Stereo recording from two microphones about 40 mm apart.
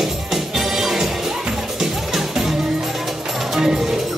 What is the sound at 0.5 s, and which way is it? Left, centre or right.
Music, centre.